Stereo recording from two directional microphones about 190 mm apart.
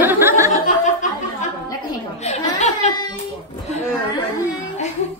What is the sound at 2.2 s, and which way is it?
Speech, 35° left (ahead or behind).